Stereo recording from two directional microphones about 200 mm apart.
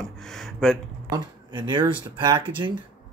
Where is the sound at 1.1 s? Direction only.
20° right (ahead or behind).